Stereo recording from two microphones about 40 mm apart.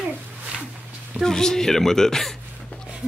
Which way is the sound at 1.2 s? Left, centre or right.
Centre.